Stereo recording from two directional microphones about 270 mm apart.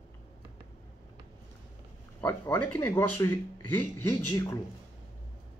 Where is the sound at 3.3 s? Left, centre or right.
Left.